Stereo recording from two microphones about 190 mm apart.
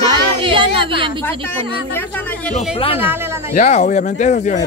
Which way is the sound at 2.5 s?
30° left (ahead or behind).